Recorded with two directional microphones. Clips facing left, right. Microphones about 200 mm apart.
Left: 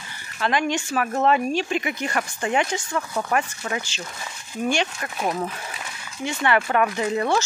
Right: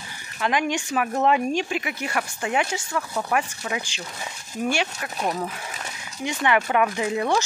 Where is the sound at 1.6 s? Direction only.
5° right (ahead or behind).